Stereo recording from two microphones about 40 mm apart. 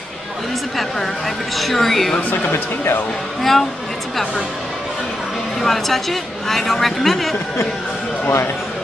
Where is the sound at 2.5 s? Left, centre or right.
Left.